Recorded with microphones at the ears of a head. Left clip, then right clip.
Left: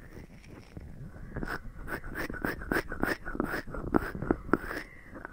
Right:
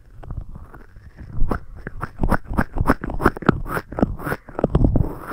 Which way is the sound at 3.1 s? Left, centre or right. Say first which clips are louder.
Right 15 dB; right.